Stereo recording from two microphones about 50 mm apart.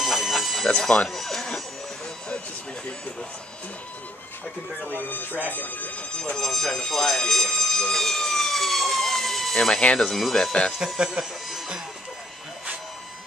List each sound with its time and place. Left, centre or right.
0.0 s a sound: centre
0.7 s speech: centre
1.1 s a sound: centre
4.9 s speech: left
6.3 s speech: centre
6.9 s emergency vehicle: centre
9.9 s speech: centre
11.0 s speech: centre